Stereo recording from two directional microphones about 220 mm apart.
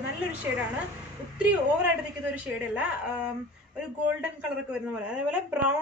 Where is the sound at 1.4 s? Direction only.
5° right (ahead or behind).